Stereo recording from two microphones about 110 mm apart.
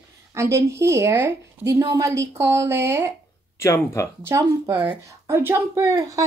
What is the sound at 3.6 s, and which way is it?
Speech, 30° left (ahead or behind).